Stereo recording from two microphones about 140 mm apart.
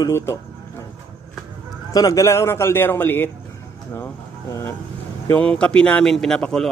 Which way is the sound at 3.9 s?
20° left (ahead or behind).